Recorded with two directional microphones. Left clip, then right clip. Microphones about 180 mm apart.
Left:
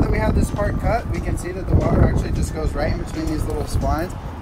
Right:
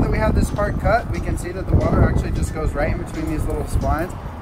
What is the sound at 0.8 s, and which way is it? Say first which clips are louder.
Speech: right 3 dB; 15° right (ahead or behind).